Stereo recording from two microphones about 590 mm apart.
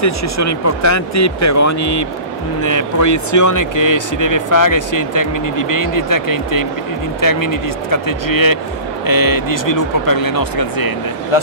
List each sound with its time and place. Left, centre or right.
0.0 s speech: left
11.3 s speech: left